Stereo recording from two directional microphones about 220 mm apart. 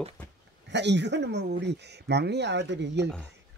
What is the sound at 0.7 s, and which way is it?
Speech, 50° right (ahead or behind).